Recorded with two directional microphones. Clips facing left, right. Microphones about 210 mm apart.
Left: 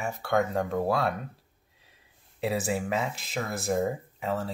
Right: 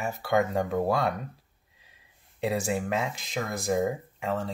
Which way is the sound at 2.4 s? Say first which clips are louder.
Right 1 dB; centre (ahead or behind).